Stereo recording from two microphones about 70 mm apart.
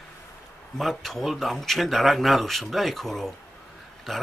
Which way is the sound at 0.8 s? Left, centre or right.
Centre.